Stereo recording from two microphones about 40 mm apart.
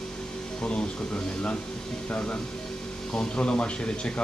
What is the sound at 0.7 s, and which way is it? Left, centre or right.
Speech, left.